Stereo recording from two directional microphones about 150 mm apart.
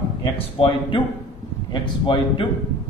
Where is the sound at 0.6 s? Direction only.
35° left (ahead or behind).